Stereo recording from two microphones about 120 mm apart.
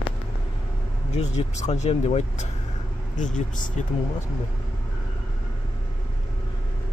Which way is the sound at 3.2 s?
90° left.